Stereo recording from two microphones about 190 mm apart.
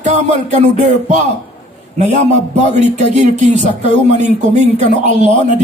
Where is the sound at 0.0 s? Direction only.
40° right (ahead or behind).